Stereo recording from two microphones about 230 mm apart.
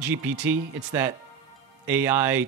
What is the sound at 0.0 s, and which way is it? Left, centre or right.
Speech, centre.